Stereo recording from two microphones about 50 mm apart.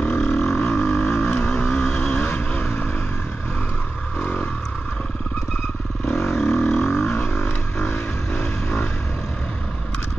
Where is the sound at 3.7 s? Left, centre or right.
Left.